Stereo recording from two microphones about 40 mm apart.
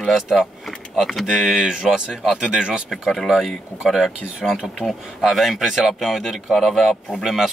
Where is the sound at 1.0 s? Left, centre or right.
Centre.